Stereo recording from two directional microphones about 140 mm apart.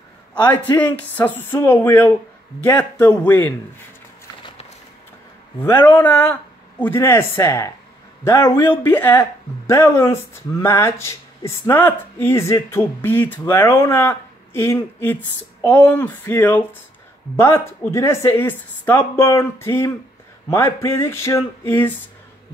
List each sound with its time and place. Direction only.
0.3 s a man's voice: 10° left (ahead or behind)
5.6 s speech: 15° left (ahead or behind)